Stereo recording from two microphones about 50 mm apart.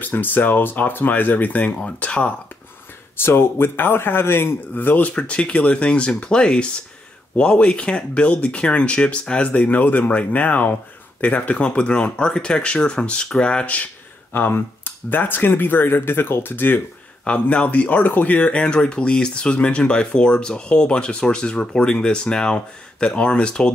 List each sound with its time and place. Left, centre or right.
0.0 s speech: left
3.2 s speech: left
4.8 s speech: left
14.3 s speech: left
17.2 s speech: left